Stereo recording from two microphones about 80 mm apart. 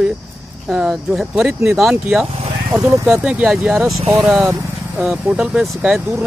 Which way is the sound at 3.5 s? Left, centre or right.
Centre.